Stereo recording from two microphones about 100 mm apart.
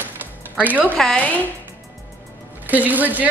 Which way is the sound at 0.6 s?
15° right (ahead or behind).